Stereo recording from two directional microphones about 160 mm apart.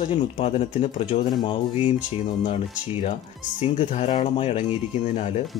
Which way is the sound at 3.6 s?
45° left (ahead or behind).